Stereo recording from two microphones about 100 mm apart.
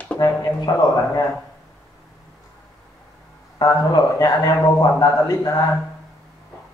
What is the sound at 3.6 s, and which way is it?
Speech, 40° left (ahead or behind).